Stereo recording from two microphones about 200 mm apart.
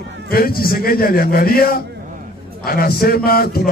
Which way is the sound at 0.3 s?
50° left (ahead or behind).